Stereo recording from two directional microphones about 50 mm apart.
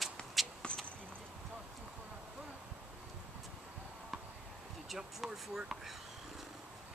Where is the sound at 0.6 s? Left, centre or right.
Left.